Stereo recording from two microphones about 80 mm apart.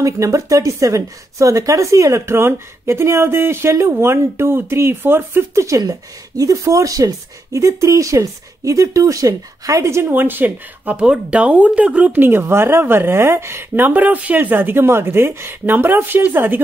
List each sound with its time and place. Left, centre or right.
0.0 s speech: right
5.8 s speech: right
10.0 s a woman's voice: right
12.3 s a woman's voice: right